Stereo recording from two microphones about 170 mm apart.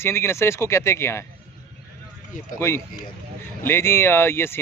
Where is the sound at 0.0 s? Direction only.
15° left (ahead or behind).